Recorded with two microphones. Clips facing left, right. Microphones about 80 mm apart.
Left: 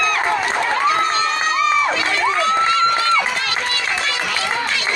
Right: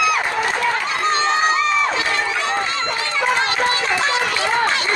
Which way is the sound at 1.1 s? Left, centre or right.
Right.